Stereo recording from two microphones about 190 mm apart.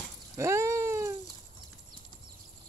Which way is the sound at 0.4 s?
15° right (ahead or behind).